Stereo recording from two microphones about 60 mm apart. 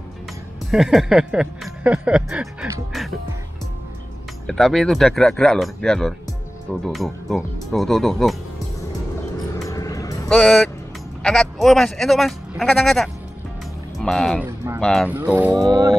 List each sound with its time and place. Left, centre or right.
0.7 s music: centre
1.8 s music: right
4.5 s speech: centre
9.7 s music: left
10.2 s speech: centre
15.0 s speech: right
15.5 s speech: right